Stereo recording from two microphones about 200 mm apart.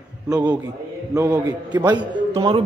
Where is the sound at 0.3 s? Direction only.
10° right (ahead or behind).